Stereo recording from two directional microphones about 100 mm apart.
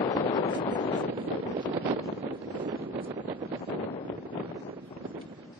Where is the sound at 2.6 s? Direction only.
55° right (ahead or behind).